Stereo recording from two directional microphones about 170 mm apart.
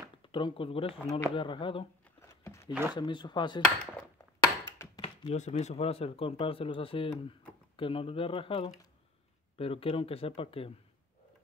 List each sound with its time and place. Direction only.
0.2 s speech: 30° left (ahead or behind)
2.2 s a sound: 15° left (ahead or behind)
2.7 s speech: 10° right (ahead or behind)
3.0 s speech: 25° left (ahead or behind)
4.4 s a sound: 20° left (ahead or behind)
5.0 s speech: 40° left (ahead or behind)